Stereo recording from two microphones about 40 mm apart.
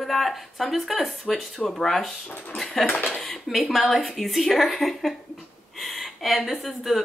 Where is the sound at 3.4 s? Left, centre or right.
Centre.